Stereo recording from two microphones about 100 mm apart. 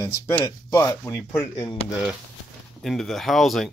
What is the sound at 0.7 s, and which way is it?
Speech, 25° left (ahead or behind).